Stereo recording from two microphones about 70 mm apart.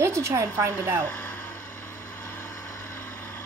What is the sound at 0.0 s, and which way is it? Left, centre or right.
Speech, right.